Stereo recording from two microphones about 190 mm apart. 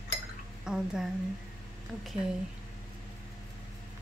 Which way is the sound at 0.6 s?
5° right (ahead or behind).